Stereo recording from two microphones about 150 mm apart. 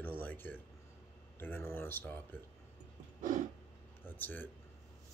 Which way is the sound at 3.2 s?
60° right (ahead or behind).